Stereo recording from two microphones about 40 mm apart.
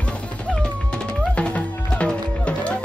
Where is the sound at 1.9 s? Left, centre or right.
Left.